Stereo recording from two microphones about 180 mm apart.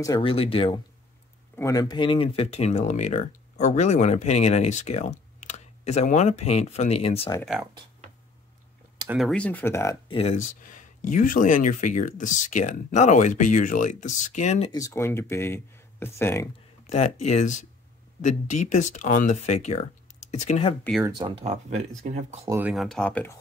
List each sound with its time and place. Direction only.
0.0 s speech: 25° left (ahead or behind)
1.6 s speech: 20° left (ahead or behind)
9.1 s speech: centre (ahead or behind)
10.1 s speech: 40° left (ahead or behind)
14.7 s speech: 15° left (ahead or behind)
16.8 s speech: 35° left (ahead or behind)
21.2 s speech: 35° right (ahead or behind)
22.7 s speech: centre (ahead or behind)